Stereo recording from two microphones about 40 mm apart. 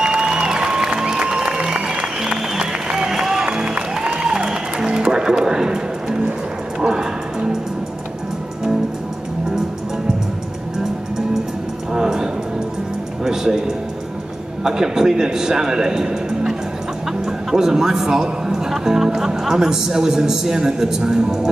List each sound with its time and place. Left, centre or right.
0.0 s music: right
6.8 s a sound: centre
11.9 s music: centre
14.6 s a man's voice: centre